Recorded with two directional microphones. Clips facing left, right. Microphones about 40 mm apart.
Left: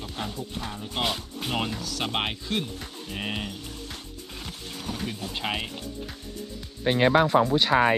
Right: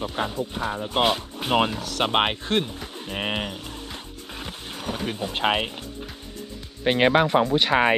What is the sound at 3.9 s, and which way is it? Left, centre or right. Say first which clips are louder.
Music: right 3 dB; right.